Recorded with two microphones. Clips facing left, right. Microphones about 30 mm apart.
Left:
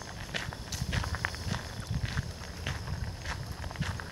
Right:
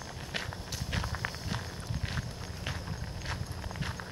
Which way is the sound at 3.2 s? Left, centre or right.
Centre.